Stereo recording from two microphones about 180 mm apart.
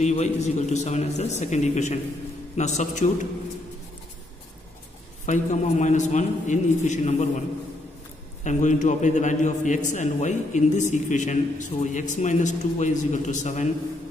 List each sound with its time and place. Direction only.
0.0 s a man's voice: 40° left (ahead or behind)
5.2 s a man's voice: 40° left (ahead or behind)
8.5 s a man's voice: 45° left (ahead or behind)